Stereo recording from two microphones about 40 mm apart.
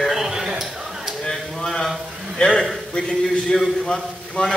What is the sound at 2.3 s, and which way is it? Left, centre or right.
A man's voice, centre.